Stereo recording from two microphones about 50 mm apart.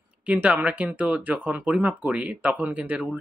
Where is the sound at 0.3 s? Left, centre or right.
Right.